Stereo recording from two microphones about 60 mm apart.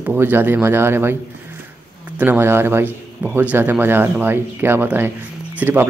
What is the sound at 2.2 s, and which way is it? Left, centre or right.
Speech, right.